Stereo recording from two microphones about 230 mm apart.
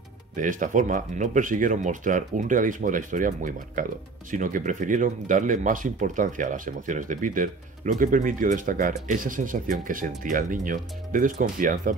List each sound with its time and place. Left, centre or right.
0.4 s speech: right